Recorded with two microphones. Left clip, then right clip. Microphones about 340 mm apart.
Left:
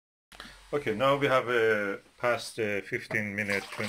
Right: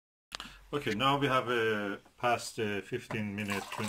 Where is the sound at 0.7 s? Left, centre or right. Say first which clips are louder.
Left 4 dB; centre.